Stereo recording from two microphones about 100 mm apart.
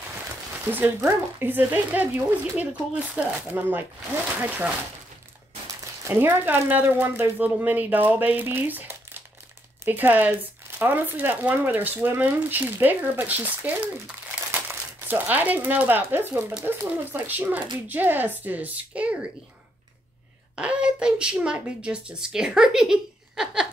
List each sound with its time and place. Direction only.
0.7 s speech: 20° right (ahead or behind)
6.0 s speech: 25° right (ahead or behind)
20.5 s speech: 10° right (ahead or behind)